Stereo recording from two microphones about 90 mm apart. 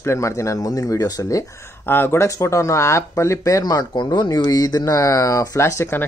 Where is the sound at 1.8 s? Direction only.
25° left (ahead or behind).